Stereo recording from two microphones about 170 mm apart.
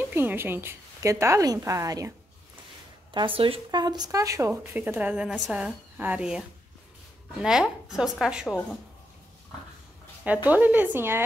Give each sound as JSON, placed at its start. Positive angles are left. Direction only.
{"t": 0.1, "sound": "speech", "side_deg": -10}
{"t": 3.1, "sound": "a woman's voice", "side_deg": -30}
{"t": 10.2, "sound": "speech", "side_deg": -10}